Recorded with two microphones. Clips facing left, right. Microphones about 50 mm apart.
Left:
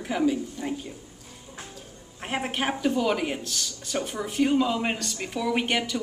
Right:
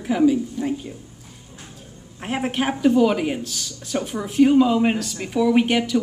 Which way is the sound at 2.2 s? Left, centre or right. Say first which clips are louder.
Right 5 dB; centre.